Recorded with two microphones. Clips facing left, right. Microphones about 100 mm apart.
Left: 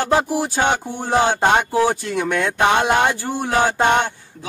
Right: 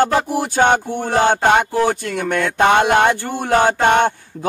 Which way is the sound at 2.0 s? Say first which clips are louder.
Right 1 dB; 55° right (ahead or behind).